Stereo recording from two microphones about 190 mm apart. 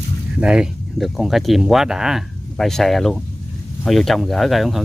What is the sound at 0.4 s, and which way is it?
Speech, 5° right (ahead or behind).